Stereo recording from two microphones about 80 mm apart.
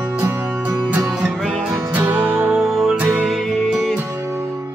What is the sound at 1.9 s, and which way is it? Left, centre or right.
Music, right.